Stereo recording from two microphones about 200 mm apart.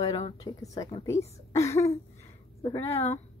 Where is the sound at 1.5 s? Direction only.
15° left (ahead or behind).